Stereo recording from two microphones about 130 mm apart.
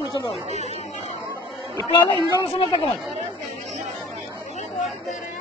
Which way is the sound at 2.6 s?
50° left (ahead or behind).